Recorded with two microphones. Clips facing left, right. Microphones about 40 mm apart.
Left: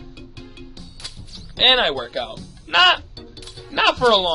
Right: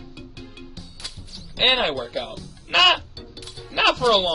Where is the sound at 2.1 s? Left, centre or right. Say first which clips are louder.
Left 2 dB; centre.